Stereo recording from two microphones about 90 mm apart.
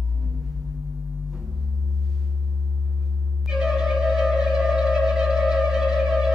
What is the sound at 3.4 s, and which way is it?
Music, 5° right (ahead or behind).